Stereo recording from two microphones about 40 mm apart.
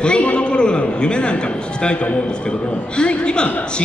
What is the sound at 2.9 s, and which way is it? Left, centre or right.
Speech, left.